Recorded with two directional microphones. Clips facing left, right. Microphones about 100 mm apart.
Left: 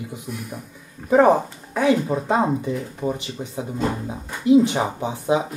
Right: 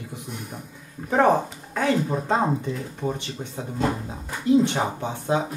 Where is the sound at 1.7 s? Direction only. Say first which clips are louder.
Left 4 dB; 10° left (ahead or behind).